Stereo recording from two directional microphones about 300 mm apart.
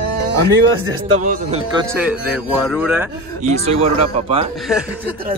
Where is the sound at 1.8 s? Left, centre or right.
Centre.